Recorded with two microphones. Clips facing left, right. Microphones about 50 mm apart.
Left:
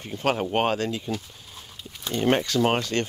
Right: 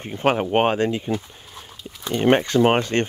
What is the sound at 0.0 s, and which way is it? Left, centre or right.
Speech, right.